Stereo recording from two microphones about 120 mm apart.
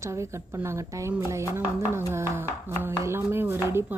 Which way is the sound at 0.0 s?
25° right (ahead or behind).